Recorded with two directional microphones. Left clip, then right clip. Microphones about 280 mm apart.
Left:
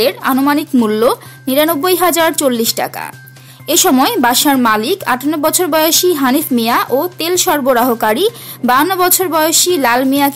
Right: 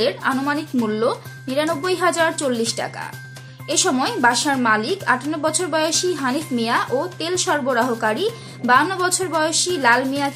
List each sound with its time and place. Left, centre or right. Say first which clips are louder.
0.0 s a woman's voice: left 7 dB; left